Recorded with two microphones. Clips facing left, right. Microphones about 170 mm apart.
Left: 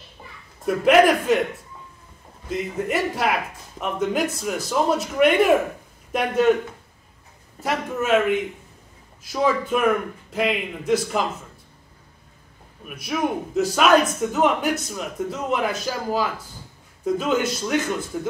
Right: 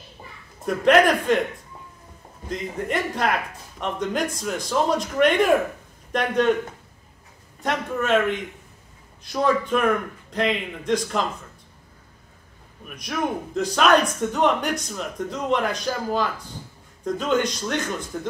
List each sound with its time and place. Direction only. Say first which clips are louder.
0.8 s a man's voice: left 1 dB; 5° left (ahead or behind)
2.5 s a man's voice: left 2 dB; 5° left (ahead or behind)
7.6 s a man's voice: even; 5° left (ahead or behind)
12.8 s a man's voice: left 2 dB; 5° left (ahead or behind)